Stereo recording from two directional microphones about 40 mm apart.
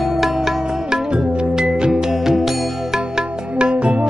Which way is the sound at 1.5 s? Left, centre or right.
Right.